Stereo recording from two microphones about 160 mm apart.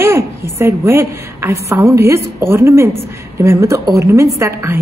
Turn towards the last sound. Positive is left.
turn(degrees=-15)  # may be behind; listen again after turning